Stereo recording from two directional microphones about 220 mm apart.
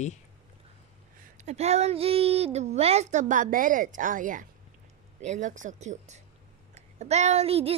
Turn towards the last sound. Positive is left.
turn(degrees=-25)  # may be behind; listen again after turning